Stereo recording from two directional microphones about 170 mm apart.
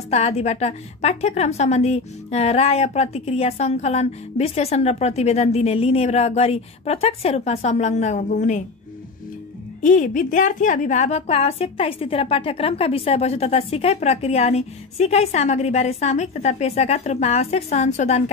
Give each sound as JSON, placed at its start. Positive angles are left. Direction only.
{"t": 0.1, "sound": "a woman's voice", "side_deg": 40}
{"t": 9.8, "sound": "a woman's voice", "side_deg": 50}